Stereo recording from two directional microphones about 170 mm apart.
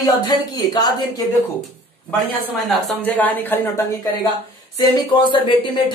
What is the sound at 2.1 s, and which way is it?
Speech, 5° left (ahead or behind).